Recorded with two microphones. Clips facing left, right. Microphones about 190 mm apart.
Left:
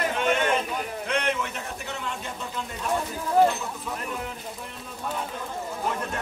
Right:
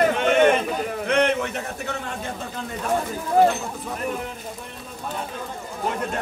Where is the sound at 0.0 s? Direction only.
65° right (ahead or behind).